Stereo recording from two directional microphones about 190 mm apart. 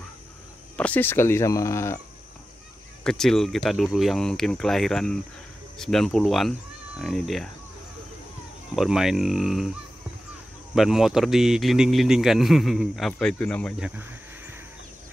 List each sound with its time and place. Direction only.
0.7 s speech: 10° left (ahead or behind)
3.0 s a man's voice: 5° left (ahead or behind)
8.7 s a man's voice: centre (ahead or behind)
13.7 s a man's voice: 5° right (ahead or behind)